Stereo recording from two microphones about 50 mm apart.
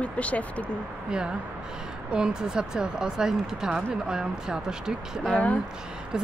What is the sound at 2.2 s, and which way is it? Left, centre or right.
Speech, centre.